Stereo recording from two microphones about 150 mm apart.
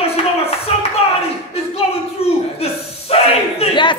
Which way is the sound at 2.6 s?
45° left (ahead or behind).